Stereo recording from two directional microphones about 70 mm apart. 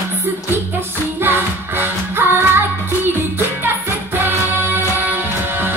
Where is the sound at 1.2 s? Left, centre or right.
Right.